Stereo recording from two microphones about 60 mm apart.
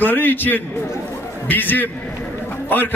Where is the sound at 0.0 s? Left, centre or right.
Left.